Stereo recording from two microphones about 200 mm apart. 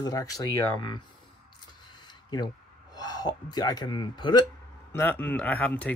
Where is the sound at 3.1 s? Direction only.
20° left (ahead or behind).